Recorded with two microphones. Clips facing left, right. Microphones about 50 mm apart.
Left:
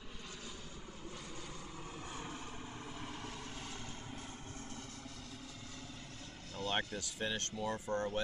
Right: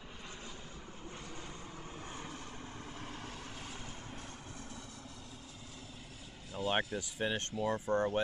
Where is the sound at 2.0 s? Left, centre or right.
Right.